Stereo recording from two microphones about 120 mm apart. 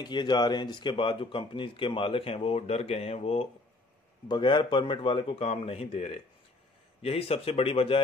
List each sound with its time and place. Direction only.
0.0 s speech: 40° left (ahead or behind); by 3.4 s 60° left (ahead or behind)
4.3 s speech: 40° left (ahead or behind)